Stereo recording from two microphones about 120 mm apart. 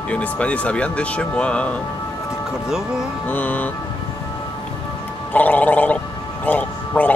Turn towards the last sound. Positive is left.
turn(degrees=15)  # may be behind; listen again after turning